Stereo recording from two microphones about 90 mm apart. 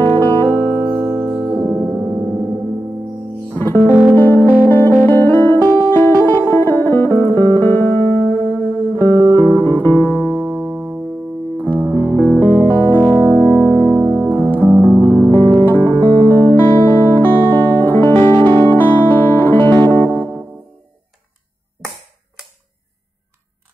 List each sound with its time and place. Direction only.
0.1 s music: 20° left (ahead or behind)
0.8 s music: 25° right (ahead or behind)
3.5 s music: 25° left (ahead or behind)
10.6 s music: centre (ahead or behind)
11.9 s music: 20° left (ahead or behind)
15.3 s music: 50° right (ahead or behind)
15.6 s music: 20° left (ahead or behind)